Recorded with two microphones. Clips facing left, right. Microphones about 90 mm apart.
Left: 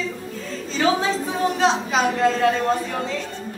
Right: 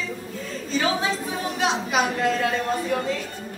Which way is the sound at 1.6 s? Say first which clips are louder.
Left 1 dB; 30° left (ahead or behind).